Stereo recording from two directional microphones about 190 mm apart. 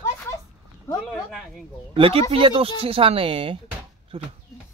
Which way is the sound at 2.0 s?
30° right (ahead or behind).